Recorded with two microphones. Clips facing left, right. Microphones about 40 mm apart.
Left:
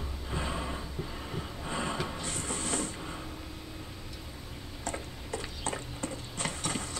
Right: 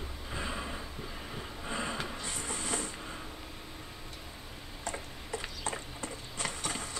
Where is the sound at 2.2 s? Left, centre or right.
Centre.